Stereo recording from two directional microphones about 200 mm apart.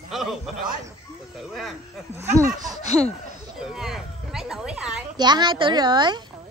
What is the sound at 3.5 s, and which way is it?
Speech, centre (ahead or behind).